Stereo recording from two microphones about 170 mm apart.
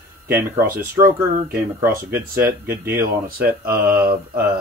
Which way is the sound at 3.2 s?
60° right (ahead or behind).